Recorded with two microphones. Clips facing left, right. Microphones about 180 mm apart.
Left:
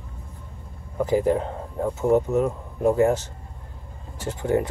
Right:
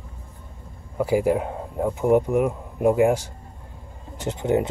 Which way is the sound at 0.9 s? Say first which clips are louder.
Even; 10° right (ahead or behind).